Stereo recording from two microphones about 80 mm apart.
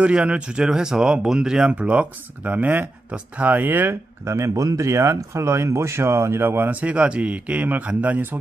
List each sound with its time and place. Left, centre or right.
0.0 s speech: centre